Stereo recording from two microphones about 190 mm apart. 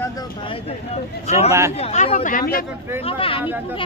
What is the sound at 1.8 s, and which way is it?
Speech, 35° left (ahead or behind).